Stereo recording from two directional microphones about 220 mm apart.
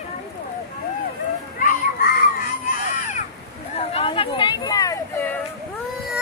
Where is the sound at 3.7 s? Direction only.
25° left (ahead or behind); by 5.4 s 10° left (ahead or behind).